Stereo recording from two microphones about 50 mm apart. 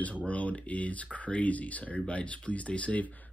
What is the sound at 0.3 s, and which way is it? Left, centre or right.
Speech, left.